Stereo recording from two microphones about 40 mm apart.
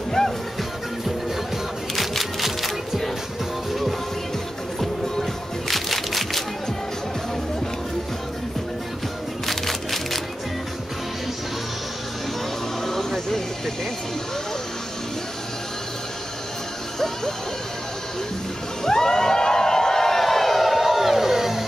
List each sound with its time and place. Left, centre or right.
0.2 s music: centre
2.0 s music: centre
5.7 s music: centre
9.5 s music: centre
12.8 s music: centre
18.9 s a sound: centre